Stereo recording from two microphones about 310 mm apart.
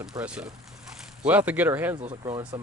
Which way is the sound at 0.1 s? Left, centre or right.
Centre.